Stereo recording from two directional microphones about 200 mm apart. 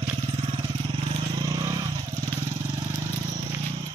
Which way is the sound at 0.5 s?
25° right (ahead or behind).